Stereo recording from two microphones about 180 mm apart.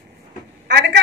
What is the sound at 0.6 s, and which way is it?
Speech, 65° right (ahead or behind).